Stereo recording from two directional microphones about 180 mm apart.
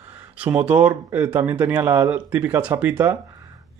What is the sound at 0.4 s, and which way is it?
Speech, 5° right (ahead or behind).